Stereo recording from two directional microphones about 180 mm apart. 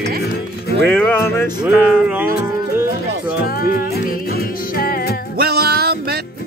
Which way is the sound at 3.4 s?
55° left (ahead or behind).